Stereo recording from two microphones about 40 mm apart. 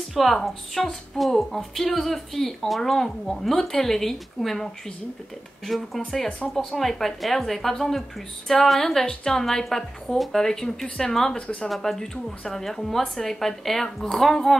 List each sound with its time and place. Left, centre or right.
0.1 s speech: centre
5.7 s speech: centre
11.3 s speech: left
11.7 s speech: centre